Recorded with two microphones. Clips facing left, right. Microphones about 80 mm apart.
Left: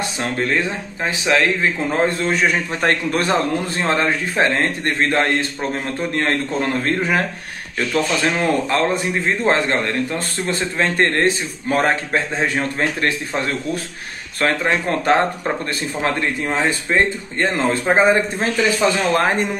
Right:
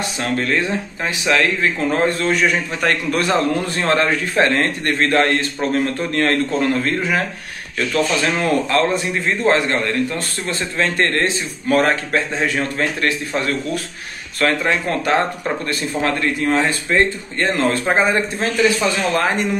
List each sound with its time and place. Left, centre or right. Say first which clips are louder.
0.2 s speech: right 1 dB; left
17.9 s speech: left 2 dB; left